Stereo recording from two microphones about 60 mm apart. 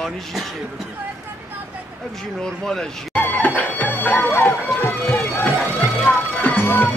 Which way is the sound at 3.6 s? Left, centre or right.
Left.